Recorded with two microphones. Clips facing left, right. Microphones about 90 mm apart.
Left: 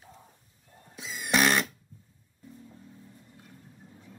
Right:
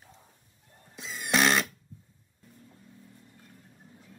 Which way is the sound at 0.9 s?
Centre (ahead or behind).